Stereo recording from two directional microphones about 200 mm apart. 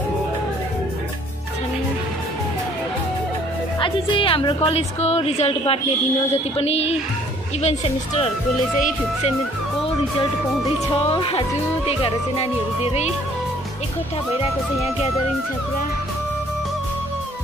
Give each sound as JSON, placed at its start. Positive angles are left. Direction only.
{"t": 3.8, "sound": "a woman's voice", "side_deg": 25}
{"t": 10.9, "sound": "a woman's voice", "side_deg": 25}